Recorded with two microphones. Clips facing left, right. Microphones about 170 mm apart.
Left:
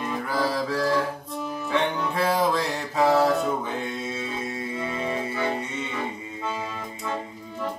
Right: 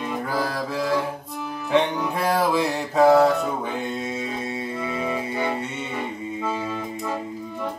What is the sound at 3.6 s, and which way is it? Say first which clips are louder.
Mantra: right 2 dB; 15° right (ahead or behind).